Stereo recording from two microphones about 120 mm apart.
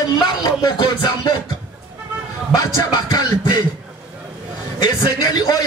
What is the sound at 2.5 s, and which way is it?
A man's voice, 35° left (ahead or behind).